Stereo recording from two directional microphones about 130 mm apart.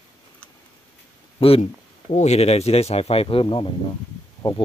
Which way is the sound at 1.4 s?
50° left (ahead or behind).